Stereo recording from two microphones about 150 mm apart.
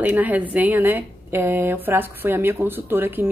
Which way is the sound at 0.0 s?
10° right (ahead or behind).